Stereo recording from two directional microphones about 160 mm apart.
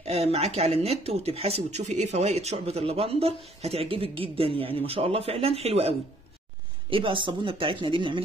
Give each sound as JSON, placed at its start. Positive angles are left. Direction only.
{"t": 0.0, "sound": "speech", "side_deg": -40}